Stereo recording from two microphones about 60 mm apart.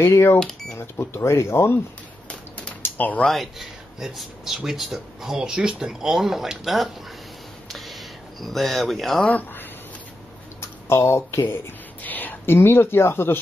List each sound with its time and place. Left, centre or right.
0.0 s speech: left
0.4 s speech: centre
0.7 s speech: left
2.8 s a sound: left
3.3 s speech: centre
7.6 s a sound: centre
9.3 s speech: left
10.9 s speech: left
11.4 s speech: left